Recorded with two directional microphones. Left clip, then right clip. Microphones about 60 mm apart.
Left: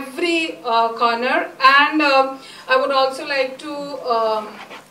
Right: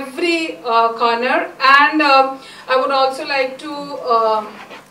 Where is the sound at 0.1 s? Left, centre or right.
Left.